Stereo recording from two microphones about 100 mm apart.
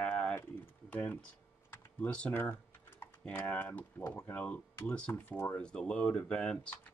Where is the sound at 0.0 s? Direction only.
15° left (ahead or behind).